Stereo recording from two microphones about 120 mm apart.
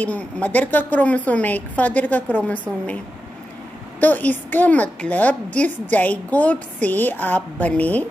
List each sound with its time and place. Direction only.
0.0 s a woman's voice: 10° left (ahead or behind)
4.0 s a woman's voice: 15° left (ahead or behind)